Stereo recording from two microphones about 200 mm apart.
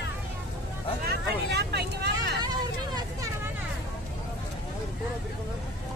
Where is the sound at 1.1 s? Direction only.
55° right (ahead or behind).